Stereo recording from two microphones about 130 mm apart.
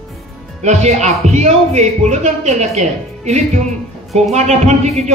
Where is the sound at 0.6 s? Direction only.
60° right (ahead or behind).